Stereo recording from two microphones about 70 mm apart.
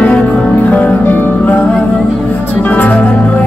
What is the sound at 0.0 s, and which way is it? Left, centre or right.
Music, centre.